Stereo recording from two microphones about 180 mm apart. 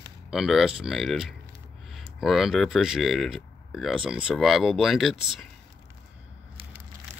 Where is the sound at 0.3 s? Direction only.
Centre (ahead or behind).